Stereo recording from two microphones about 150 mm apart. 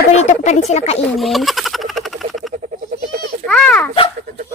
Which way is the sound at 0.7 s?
45° left (ahead or behind).